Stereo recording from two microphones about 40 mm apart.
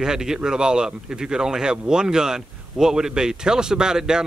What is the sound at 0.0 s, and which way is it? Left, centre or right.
A man's voice, centre.